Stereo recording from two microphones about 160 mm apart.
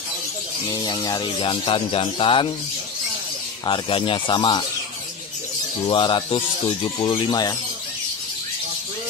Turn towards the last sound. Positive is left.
turn(degrees=25)  # may be behind; listen again after turning